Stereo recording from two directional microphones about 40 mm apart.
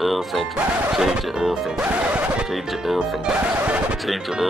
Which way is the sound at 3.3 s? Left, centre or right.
Right.